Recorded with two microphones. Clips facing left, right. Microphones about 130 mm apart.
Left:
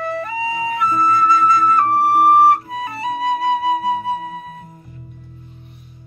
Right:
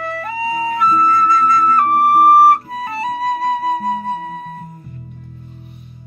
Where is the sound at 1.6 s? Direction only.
35° right (ahead or behind).